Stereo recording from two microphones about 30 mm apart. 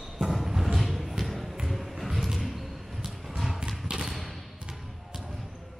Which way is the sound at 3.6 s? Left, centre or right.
Right.